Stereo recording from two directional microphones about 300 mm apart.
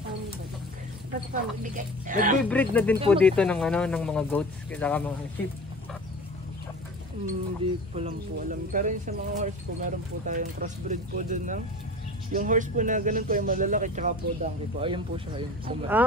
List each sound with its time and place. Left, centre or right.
1.3 s speech: right
2.4 s speech: centre
7.9 s speech: right